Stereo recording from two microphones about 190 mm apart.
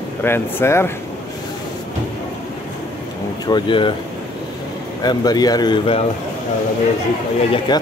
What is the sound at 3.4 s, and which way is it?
Speech, 25° left (ahead or behind).